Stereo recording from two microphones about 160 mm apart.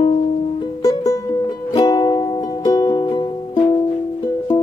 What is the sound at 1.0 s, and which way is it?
Music, 20° left (ahead or behind).